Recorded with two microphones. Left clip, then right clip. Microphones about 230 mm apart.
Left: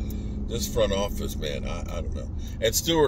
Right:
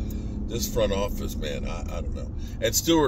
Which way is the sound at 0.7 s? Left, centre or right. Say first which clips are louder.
Left 1 dB; centre.